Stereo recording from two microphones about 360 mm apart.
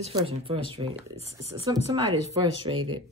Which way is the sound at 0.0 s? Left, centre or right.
Centre.